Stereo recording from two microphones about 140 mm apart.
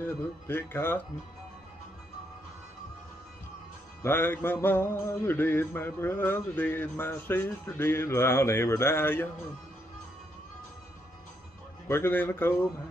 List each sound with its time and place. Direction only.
0.0 s music: 15° left (ahead or behind)
4.0 s music: 15° left (ahead or behind)
11.9 s music: 15° left (ahead or behind)